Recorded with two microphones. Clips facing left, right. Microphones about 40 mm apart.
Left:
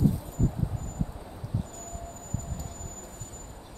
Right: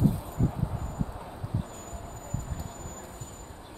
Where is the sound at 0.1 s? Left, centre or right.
Right.